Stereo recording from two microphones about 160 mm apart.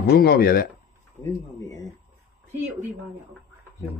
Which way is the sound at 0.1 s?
80° left.